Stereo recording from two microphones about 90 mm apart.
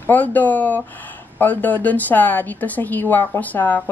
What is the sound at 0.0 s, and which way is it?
Speech, 20° left (ahead or behind).